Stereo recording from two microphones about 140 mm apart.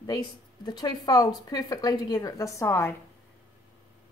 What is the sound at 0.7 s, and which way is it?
A woman's voice, 30° left (ahead or behind).